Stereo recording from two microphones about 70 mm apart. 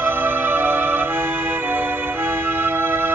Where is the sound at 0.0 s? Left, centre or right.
Right.